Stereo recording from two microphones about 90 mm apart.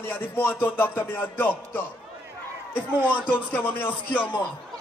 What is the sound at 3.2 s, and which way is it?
Speech, 20° left (ahead or behind).